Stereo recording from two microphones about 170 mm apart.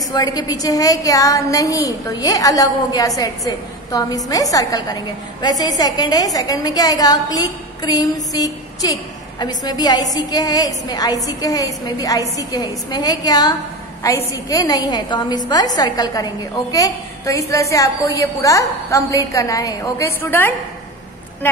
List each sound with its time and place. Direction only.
0.1 s a woman's voice: 20° left (ahead or behind)